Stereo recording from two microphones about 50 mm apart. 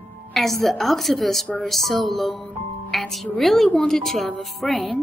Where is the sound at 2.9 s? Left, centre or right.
Centre.